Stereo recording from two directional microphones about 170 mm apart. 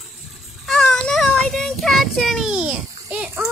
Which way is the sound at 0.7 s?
5° left (ahead or behind).